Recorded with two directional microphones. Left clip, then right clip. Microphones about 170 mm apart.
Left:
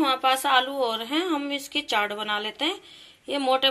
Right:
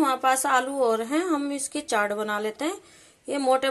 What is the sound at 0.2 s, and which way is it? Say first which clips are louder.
Speech: left 1 dB; 45° right (ahead or behind).